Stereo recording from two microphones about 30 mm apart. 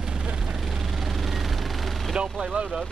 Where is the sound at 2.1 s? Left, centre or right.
Right.